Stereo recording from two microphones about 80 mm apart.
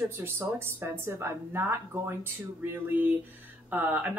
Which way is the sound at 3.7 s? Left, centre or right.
Right.